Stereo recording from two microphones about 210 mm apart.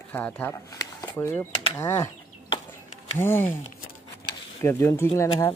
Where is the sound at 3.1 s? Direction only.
10° left (ahead or behind).